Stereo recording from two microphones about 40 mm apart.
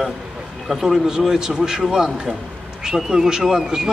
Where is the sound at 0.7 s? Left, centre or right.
Centre.